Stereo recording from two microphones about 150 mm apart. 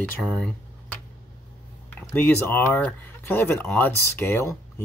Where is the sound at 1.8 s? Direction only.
10° left (ahead or behind).